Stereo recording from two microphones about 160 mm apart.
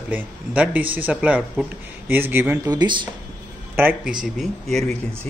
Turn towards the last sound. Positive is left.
turn(degrees=0)  # may be behind; listen again after turning